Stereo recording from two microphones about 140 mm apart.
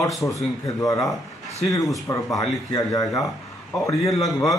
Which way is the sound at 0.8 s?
25° left (ahead or behind).